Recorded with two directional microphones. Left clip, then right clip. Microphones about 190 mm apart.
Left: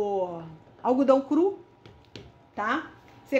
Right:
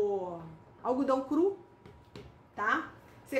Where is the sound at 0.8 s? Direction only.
35° left (ahead or behind).